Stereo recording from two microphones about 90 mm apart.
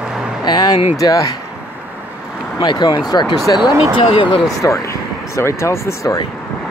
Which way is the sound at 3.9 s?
80° left.